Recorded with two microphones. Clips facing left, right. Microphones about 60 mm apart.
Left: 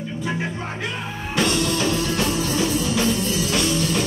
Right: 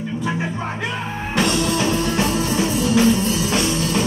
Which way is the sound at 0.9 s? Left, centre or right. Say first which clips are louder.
Right 2 dB; right.